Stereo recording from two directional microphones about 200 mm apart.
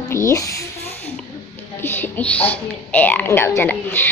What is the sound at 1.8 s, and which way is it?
Speech, 10° left (ahead or behind).